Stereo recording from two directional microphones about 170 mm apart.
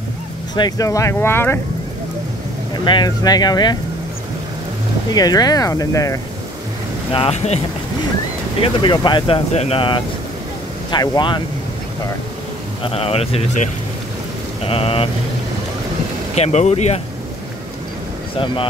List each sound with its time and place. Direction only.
0.6 s speech: 20° left (ahead or behind)
2.7 s speech: 25° left (ahead or behind)
5.1 s speech: 20° left (ahead or behind)
7.1 s speech: 35° left (ahead or behind)
12.8 s speech: 35° left (ahead or behind)
14.7 s speech: 35° left (ahead or behind)
16.3 s speech: 40° left (ahead or behind)
18.4 s speech: 30° left (ahead or behind)